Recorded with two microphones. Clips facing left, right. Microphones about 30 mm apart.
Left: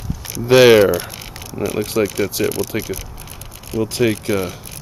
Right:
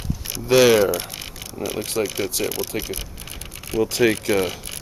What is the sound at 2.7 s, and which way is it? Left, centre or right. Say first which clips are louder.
Speech: left 4 dB; centre.